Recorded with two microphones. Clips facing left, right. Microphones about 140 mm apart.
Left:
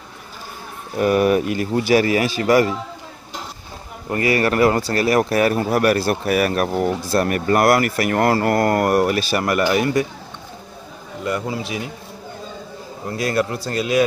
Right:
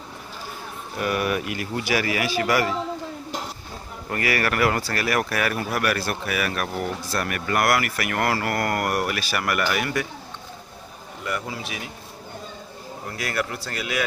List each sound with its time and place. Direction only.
0.9 s a man's voice: 30° left (ahead or behind)
4.1 s speech: 25° left (ahead or behind)
11.2 s a man's voice: 25° left (ahead or behind)
13.3 s a man's voice: 25° left (ahead or behind)